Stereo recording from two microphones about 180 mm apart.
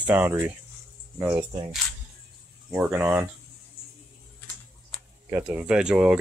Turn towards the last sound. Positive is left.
turn(degrees=-5)  # may be behind; listen again after turning